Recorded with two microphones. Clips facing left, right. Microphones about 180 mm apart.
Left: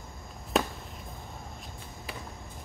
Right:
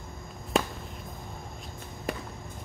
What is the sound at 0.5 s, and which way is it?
Chop, centre (ahead or behind).